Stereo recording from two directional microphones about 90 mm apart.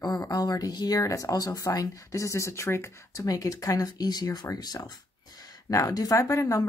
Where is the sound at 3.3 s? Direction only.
40° left (ahead or behind).